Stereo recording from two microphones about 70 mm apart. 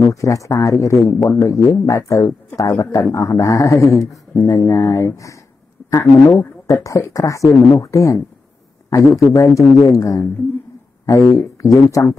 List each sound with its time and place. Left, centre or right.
0.0 s speech: left
6.7 s speech: left